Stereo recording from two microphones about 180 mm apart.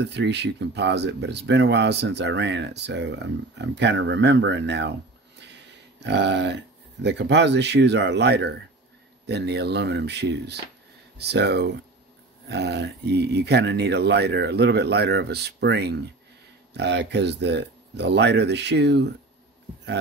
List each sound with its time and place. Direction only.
0.0 s speech: 75° right (ahead or behind)